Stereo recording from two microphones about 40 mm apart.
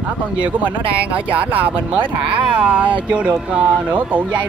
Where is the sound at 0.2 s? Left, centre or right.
Right.